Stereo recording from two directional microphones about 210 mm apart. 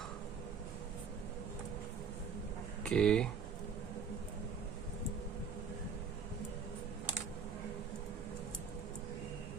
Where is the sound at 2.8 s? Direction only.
5° left (ahead or behind).